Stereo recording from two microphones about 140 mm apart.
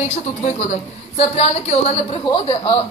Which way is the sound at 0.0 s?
55° left (ahead or behind).